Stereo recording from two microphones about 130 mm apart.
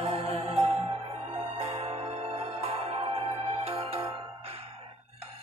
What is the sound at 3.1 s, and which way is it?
Music, 50° right (ahead or behind).